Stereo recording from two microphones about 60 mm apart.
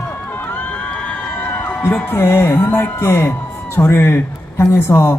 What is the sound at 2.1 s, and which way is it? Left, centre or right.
A man's voice, left.